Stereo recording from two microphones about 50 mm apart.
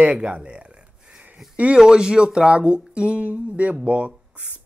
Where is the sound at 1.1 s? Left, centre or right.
Right.